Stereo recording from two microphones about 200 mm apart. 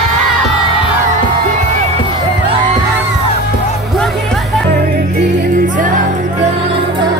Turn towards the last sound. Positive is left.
turn(degrees=-40)  # may be behind; listen again after turning